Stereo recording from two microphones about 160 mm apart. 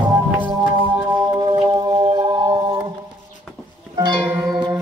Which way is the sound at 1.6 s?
30° right (ahead or behind).